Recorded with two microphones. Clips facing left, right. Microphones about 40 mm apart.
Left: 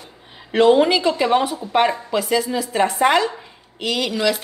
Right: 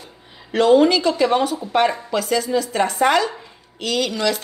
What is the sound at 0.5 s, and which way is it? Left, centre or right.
Speech, centre.